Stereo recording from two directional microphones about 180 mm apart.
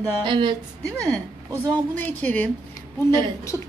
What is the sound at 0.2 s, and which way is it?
Speech, 25° right (ahead or behind).